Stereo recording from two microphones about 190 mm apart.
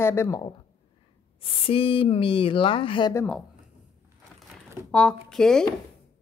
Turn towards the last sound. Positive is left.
turn(degrees=5)  # may be behind; listen again after turning